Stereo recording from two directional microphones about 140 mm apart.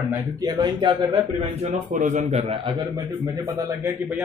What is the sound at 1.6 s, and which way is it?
Speech, 65° right (ahead or behind).